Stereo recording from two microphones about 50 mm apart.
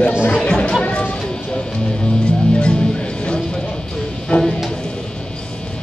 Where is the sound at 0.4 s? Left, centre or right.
Centre.